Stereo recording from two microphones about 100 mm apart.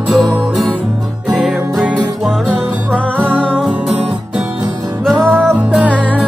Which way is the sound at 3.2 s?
15° right (ahead or behind).